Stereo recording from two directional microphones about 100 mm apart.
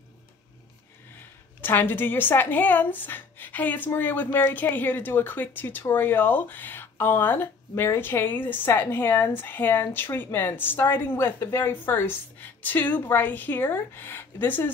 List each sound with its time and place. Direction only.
1.6 s a woman's voice: 20° left (ahead or behind)